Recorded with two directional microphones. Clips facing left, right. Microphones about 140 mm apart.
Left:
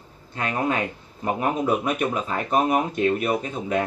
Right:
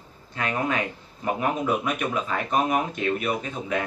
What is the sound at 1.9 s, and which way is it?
Speech, 40° left (ahead or behind).